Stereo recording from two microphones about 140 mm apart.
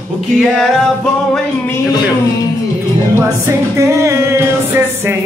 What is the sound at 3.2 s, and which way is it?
Music, 20° right (ahead or behind).